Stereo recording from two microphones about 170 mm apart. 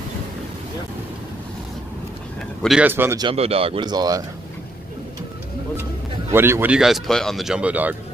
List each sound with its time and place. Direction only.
2.6 s speech: 5° right (ahead or behind)
3.2 s speech: 35° right (ahead or behind)
6.3 s speech: 15° right (ahead or behind)